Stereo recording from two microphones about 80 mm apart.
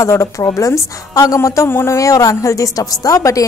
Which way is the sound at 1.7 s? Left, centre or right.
Left.